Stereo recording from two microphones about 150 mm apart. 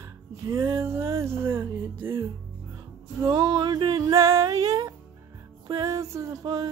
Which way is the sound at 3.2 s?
25° right (ahead or behind).